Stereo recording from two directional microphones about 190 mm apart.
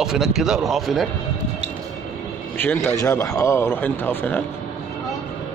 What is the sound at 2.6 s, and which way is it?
A man's voice, 10° left (ahead or behind).